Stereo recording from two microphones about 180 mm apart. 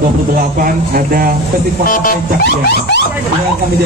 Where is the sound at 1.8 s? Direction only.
50° left (ahead or behind).